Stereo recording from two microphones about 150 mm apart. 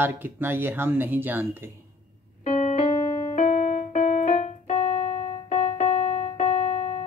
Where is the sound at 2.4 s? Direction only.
50° left (ahead or behind).